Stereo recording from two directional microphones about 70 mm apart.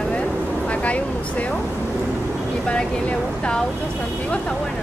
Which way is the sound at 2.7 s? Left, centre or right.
Centre.